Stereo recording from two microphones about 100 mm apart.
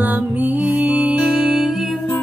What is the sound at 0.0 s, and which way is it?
Music, 15° right (ahead or behind).